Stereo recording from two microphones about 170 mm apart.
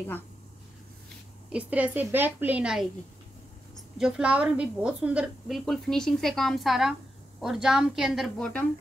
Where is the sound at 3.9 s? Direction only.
5° right (ahead or behind).